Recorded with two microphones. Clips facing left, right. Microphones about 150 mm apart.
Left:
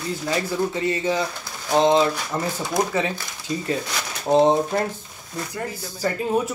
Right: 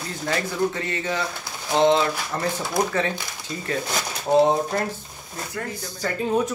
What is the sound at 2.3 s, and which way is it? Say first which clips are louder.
Speech: right 1 dB; 10° left (ahead or behind).